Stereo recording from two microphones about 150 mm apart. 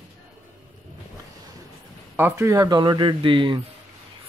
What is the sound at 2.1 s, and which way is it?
A man's voice, 15° right (ahead or behind).